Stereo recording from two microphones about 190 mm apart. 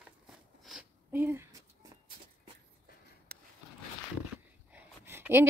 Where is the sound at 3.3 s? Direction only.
50° right (ahead or behind).